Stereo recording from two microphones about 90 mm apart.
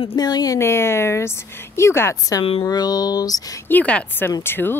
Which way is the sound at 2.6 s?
45° left (ahead or behind).